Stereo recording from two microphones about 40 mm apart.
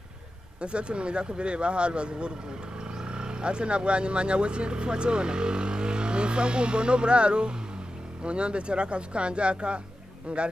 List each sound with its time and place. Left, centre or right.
0.6 s speech: right